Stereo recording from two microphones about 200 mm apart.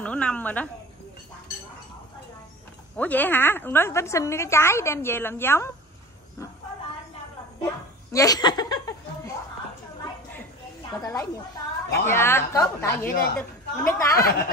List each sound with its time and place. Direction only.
0.0 s a woman's voice: 5° left (ahead or behind)
3.0 s a woman's voice: 10° left (ahead or behind)
7.6 s a sound: 15° left (ahead or behind)
10.9 s a woman's voice: 15° left (ahead or behind)
14.1 s speech: 45° left (ahead or behind)